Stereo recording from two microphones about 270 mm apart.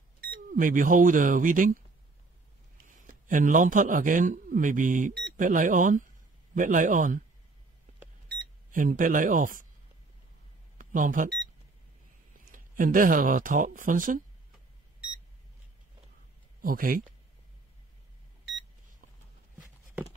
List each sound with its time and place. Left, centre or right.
0.2 s speech: right
3.1 s a man's voice: right
8.3 s speech: right
10.8 s speech: right
12.4 s speech: right
16.6 s speech: right